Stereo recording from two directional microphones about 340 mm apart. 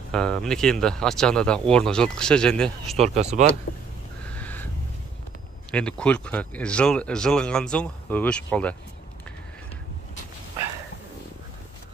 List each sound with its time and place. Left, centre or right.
0.1 s speech: centre
3.0 s speech: centre
4.2 s a sound: centre
5.7 s speech: centre